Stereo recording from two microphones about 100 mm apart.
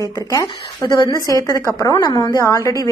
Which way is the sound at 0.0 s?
35° left (ahead or behind).